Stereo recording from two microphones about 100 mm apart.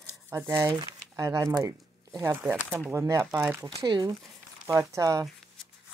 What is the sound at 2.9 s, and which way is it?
Speech, 30° right (ahead or behind).